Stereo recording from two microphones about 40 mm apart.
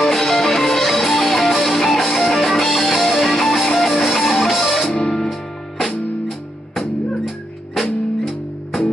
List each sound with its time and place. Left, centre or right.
0.0 s music: centre
4.9 s music: centre